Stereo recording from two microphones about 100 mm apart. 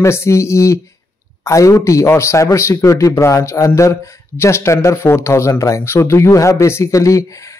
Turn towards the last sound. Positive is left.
turn(degrees=35)  # may be behind; listen again after turning